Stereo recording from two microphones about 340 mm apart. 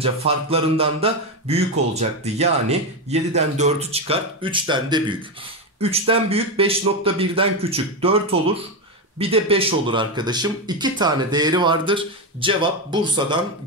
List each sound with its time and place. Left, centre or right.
0.0 s speech: centre